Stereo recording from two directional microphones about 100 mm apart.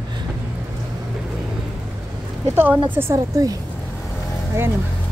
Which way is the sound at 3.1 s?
40° right (ahead or behind).